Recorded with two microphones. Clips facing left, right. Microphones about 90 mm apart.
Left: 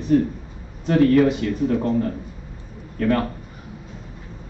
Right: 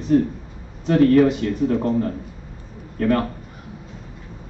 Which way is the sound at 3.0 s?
35° right (ahead or behind).